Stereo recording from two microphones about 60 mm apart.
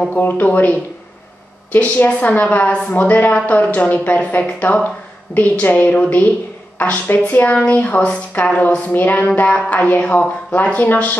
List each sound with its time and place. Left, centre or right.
0.1 s speech: left